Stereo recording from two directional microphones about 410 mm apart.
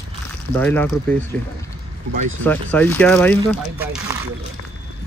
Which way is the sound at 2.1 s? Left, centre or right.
Right.